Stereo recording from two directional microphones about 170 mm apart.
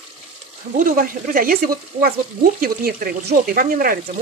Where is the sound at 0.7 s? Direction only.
55° right (ahead or behind).